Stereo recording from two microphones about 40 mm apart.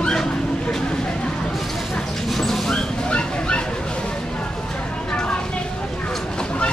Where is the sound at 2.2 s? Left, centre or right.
Centre.